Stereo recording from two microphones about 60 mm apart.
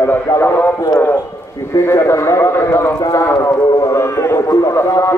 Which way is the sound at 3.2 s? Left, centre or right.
Left.